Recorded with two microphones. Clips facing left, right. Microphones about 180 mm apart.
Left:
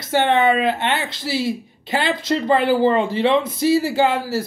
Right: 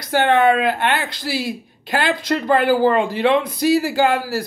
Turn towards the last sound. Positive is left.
turn(degrees=20)  # may be behind; listen again after turning